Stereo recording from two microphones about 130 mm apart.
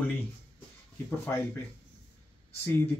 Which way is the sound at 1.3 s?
20° left (ahead or behind).